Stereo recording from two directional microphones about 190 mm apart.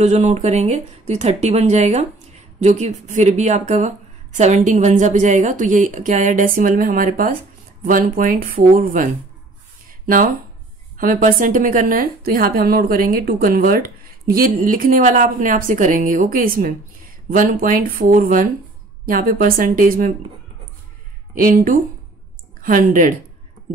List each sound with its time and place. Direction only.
0.0 s a woman's voice: 35° right (ahead or behind)
9.8 s a sound: 45° right (ahead or behind)
11.0 s a woman's voice: 45° right (ahead or behind)
21.4 s a woman's voice: 45° right (ahead or behind)